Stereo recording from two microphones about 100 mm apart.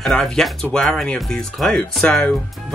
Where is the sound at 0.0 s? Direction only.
5° left (ahead or behind).